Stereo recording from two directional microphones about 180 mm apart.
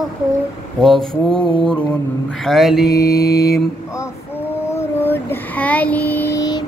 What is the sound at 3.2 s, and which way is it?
Mantra, 20° left (ahead or behind).